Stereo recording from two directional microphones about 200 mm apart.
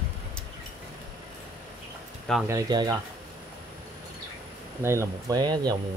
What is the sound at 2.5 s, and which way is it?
Speech, 20° right (ahead or behind).